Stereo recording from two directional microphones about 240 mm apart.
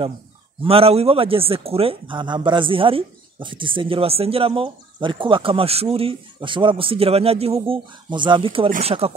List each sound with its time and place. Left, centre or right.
0.7 s speech: right